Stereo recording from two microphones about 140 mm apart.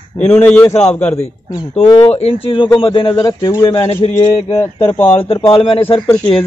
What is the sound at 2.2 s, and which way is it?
Speech, 40° left (ahead or behind).